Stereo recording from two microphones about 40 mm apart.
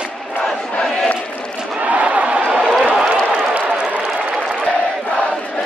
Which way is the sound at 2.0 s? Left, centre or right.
Right.